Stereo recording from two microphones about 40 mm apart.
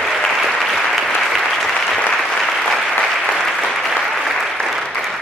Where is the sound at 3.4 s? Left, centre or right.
Centre.